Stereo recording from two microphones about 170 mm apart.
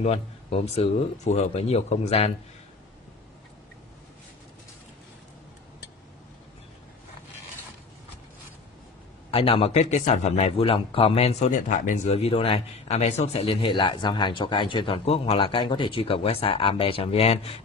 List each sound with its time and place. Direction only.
0.0 s speech: 35° left (ahead or behind)
9.3 s speech: 35° left (ahead or behind)